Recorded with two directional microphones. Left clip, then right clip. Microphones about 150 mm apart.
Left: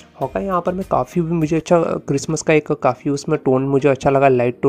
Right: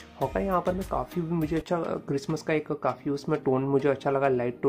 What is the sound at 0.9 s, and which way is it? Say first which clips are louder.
A man's voice: left 12 dB; 45° left (ahead or behind).